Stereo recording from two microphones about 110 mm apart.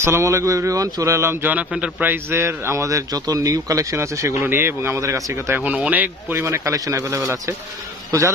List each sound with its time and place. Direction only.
0.0 s a man's voice: 25° right (ahead or behind)